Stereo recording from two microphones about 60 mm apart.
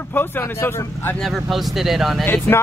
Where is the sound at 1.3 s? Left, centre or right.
Centre.